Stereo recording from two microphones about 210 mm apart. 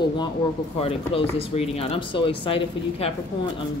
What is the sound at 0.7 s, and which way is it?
Speech, 30° left (ahead or behind).